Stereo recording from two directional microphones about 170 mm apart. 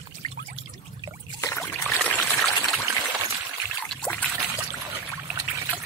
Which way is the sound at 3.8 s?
10° left (ahead or behind).